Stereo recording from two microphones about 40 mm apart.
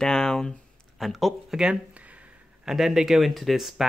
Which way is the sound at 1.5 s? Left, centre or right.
Right.